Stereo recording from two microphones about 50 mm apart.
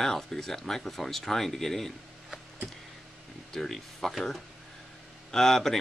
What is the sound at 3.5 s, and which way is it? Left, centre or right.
Speech, centre.